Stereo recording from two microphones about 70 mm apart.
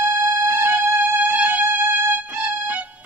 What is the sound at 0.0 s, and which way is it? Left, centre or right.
Music, right.